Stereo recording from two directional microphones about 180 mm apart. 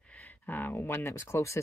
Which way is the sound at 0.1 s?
10° left (ahead or behind).